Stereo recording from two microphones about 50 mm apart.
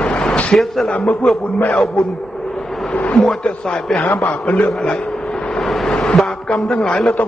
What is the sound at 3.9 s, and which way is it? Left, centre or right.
Speech, left.